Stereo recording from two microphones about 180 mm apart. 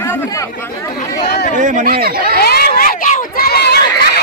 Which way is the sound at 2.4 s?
60° left (ahead or behind).